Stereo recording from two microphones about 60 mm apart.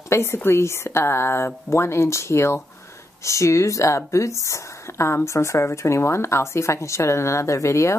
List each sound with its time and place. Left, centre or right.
0.1 s speech: left